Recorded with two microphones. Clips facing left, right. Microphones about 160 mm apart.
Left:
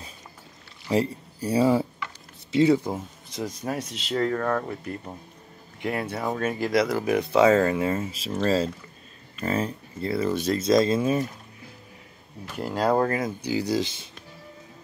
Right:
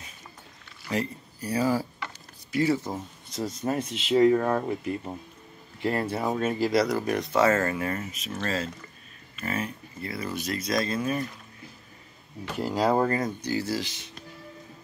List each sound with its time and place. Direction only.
0.8 s speech: 30° left (ahead or behind)
3.6 s speech: centre (ahead or behind)
4.1 s speech: 10° right (ahead or behind)
5.9 s speech: centre (ahead or behind); by 11.2 s 25° left (ahead or behind)
12.5 s speech: 5° right (ahead or behind); by 13.9 s 20° left (ahead or behind)